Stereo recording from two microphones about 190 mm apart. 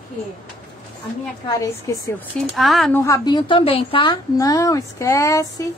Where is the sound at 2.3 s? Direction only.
Centre (ahead or behind).